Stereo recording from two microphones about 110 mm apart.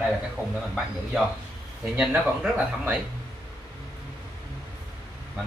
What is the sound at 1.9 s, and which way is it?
Speech, 15° right (ahead or behind).